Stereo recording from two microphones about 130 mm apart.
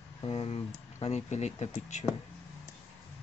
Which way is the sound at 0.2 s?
45° left (ahead or behind).